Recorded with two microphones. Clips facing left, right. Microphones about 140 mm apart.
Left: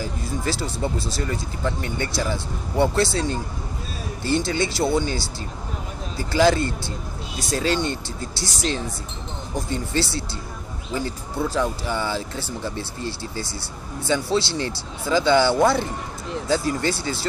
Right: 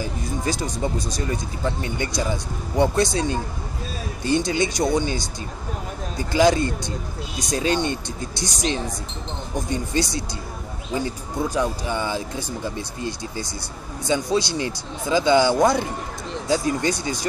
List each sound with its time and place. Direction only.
0.0 s speech: 20° right (ahead or behind)